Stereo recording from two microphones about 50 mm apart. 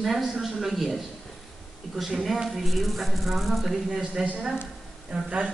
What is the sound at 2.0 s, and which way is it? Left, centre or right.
Speech, centre.